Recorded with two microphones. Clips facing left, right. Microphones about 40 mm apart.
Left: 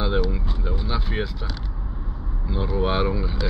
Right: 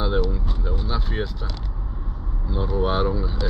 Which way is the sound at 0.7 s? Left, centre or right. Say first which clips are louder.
Even; left.